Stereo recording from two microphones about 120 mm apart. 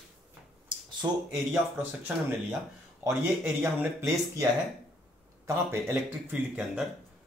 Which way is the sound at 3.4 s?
20° right (ahead or behind).